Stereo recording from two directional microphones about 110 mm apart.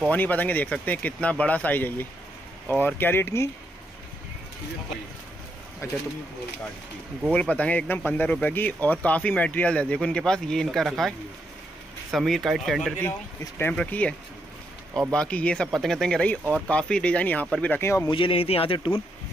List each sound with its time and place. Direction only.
0.1 s speech: 15° left (ahead or behind)
5.8 s speech: 25° left (ahead or behind)
7.3 s speech: 10° left (ahead or behind)
13.6 s speech: 15° left (ahead or behind)
15.1 s speech: 10° left (ahead or behind)
18.0 s speech: 50° left (ahead or behind)